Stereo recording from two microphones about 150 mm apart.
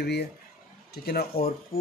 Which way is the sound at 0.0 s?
90° left.